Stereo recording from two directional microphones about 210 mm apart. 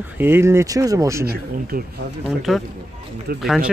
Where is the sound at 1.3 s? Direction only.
45° right (ahead or behind).